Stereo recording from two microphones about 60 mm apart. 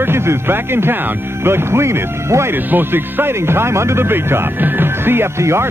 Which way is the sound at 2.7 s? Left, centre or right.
Right.